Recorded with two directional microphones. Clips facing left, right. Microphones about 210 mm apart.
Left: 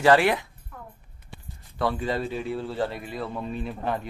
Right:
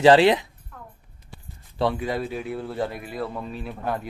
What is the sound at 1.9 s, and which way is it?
Speech, 10° right (ahead or behind).